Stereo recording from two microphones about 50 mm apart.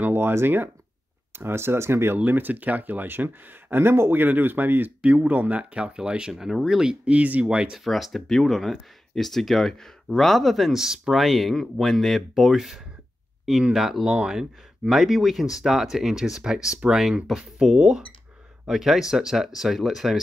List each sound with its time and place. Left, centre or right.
0.0 s speech: right
2.1 s speech: right
5.0 s speech: right
7.4 s speech: centre
7.8 s speech: centre
14.0 s speech: centre